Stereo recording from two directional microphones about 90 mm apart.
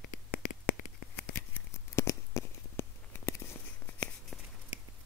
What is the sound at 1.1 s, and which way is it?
Scissors, 20° left (ahead or behind).